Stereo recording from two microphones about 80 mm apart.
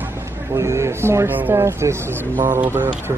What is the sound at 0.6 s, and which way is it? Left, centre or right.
Speech, right.